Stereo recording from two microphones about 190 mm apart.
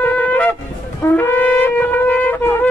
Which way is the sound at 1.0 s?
10° left (ahead or behind).